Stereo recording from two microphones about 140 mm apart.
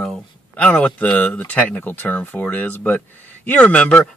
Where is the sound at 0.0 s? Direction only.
5° left (ahead or behind).